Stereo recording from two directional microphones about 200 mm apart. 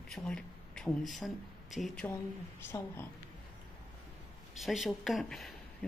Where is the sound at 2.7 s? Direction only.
10° left (ahead or behind).